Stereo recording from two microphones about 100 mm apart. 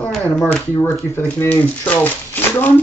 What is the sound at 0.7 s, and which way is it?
Speech, 25° left (ahead or behind).